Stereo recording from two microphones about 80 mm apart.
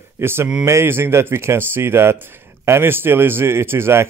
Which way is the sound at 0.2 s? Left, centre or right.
Right.